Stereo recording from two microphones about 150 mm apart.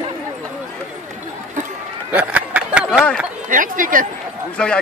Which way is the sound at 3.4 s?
65° right (ahead or behind).